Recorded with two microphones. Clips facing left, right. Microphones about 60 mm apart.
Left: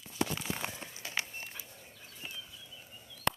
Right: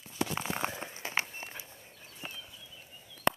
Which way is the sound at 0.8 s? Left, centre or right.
Right.